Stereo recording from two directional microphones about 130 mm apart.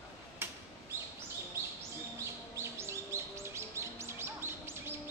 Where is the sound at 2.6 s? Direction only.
20° right (ahead or behind).